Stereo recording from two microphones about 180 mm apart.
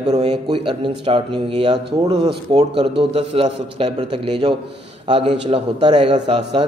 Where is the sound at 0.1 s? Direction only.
40° right (ahead or behind).